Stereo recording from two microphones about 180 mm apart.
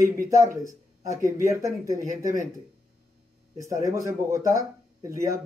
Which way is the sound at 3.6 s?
15° right (ahead or behind).